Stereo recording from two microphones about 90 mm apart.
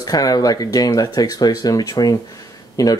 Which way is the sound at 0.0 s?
45° left (ahead or behind).